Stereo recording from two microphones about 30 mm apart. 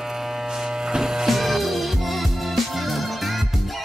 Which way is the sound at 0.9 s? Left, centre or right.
Centre.